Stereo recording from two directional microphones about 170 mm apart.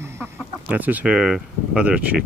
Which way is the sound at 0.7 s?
10° right (ahead or behind).